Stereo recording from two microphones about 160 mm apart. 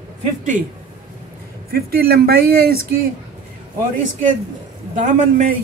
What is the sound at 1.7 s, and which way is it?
Speech, 75° right (ahead or behind).